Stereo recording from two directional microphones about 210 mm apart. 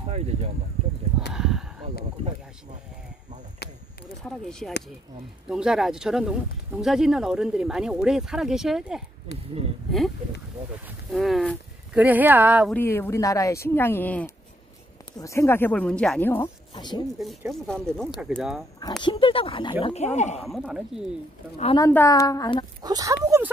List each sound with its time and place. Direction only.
1.3 s a sound: centre (ahead or behind)
4.2 s speech: 5° left (ahead or behind)
11.1 s speech: centre (ahead or behind)
12.7 s speech: 10° left (ahead or behind)
16.7 s speech: 20° left (ahead or behind)
17.2 s speech: centre (ahead or behind)
19.0 s speech: 25° left (ahead or behind)
20.4 s speech: centre (ahead or behind)
21.7 s speech: 15° left (ahead or behind)
22.8 s speech: 20° right (ahead or behind)